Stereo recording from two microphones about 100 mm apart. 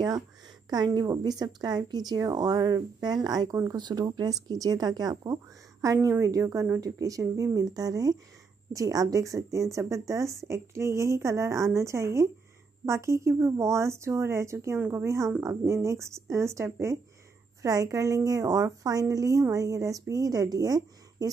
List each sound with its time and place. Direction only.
0.7 s a woman's voice: 45° right (ahead or behind)
14.8 s a woman's voice: 20° right (ahead or behind)
15.0 s a woman's voice: 30° right (ahead or behind)